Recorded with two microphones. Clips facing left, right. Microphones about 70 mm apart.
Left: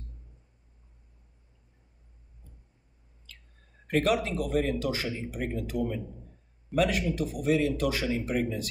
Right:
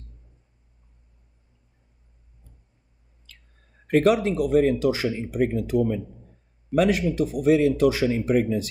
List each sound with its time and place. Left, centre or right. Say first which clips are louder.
3.9 s speech: right 7 dB; right